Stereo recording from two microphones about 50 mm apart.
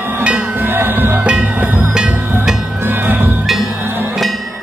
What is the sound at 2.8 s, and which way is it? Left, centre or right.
Music, right.